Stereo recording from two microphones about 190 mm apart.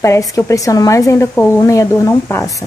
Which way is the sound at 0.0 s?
15° left (ahead or behind).